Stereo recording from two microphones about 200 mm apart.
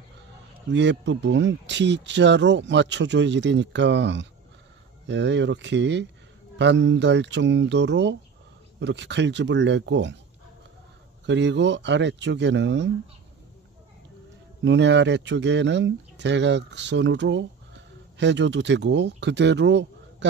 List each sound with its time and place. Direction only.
0.7 s speech: 60° right (ahead or behind)
11.2 s speech: 60° right (ahead or behind)
14.6 s speech: 60° right (ahead or behind)